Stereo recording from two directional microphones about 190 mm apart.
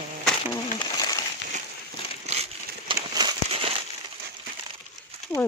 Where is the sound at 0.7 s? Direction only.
20° left (ahead or behind).